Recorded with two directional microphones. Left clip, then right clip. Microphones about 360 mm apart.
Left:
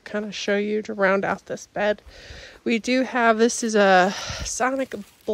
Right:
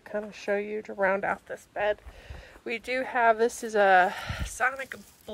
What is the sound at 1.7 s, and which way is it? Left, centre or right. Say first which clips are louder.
Speech: left 5 dB; centre.